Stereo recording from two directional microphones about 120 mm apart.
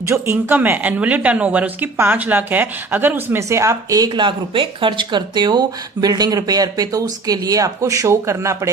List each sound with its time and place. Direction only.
0.0 s speech: 20° right (ahead or behind)